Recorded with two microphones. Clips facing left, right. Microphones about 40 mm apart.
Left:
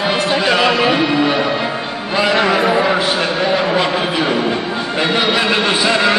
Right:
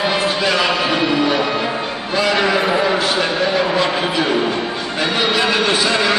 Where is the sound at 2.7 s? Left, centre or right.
Centre.